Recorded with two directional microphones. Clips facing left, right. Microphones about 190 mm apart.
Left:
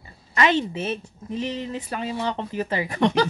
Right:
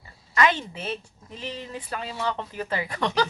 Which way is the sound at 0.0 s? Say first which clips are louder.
Left 1 dB; 25° left (ahead or behind).